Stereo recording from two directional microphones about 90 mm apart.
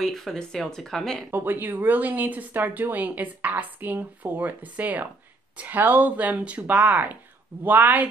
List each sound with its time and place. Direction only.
0.0 s speech: 5° left (ahead or behind)
1.3 s speech: 25° right (ahead or behind)